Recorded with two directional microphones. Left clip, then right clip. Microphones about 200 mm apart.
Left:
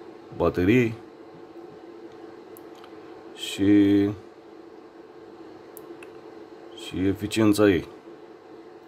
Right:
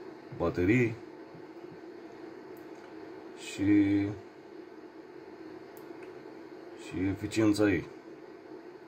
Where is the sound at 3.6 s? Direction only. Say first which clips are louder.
Left 7 dB; 50° left (ahead or behind).